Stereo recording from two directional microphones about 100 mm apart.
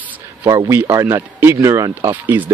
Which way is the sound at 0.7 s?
30° right (ahead or behind).